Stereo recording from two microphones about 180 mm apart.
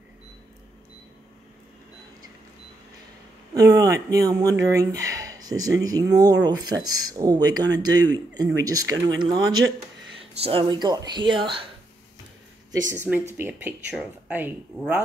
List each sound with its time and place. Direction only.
3.5 s speech: 20° right (ahead or behind)
13.3 s speech: 10° right (ahead or behind)